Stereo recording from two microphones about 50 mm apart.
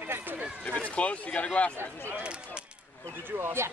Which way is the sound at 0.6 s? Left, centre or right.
Left.